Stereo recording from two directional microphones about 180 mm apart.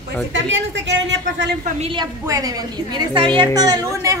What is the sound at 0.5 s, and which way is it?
A man's voice, 80° right.